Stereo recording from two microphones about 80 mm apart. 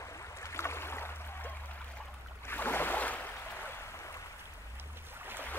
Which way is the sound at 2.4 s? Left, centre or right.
Left.